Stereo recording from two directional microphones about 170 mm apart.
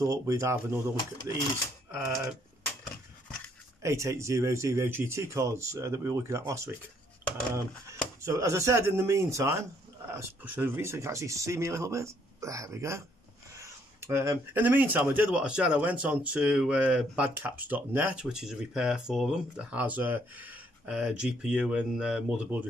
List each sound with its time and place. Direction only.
0.0 s speech: 20° right (ahead or behind)
1.9 s speech: 10° right (ahead or behind)
3.8 s speech: 15° right (ahead or behind)
8.2 s speech: 15° right (ahead or behind)